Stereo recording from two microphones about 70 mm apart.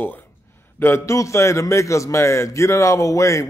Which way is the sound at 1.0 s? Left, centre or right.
Left.